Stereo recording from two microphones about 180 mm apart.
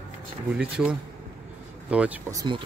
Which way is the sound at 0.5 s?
5° right (ahead or behind).